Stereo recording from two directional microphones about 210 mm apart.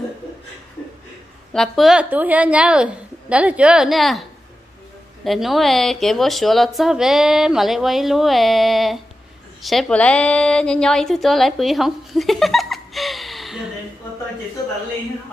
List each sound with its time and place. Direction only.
1.5 s speech: centre (ahead or behind)
5.2 s a woman's voice: centre (ahead or behind)